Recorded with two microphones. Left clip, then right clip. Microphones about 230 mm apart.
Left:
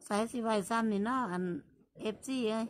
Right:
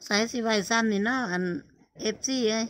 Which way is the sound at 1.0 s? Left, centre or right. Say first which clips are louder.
Right 6 dB; centre.